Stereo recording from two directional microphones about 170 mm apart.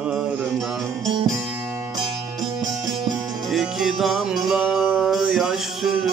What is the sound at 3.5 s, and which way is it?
Music, centre (ahead or behind).